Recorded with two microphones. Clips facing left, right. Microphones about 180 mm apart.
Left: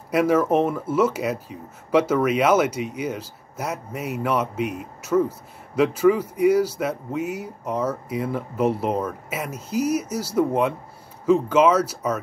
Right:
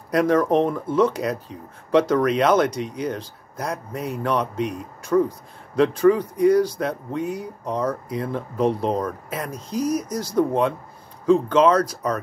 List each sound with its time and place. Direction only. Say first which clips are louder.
0.1 s speech: even; 5° left (ahead or behind)